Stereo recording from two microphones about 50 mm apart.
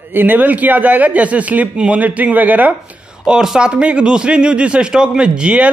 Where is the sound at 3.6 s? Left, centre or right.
Right.